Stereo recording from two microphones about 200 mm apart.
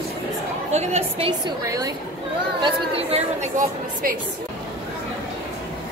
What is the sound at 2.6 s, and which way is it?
A woman's voice, 30° right (ahead or behind).